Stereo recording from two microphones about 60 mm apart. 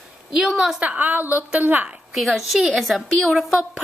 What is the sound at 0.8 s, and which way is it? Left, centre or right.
A woman's voice, right.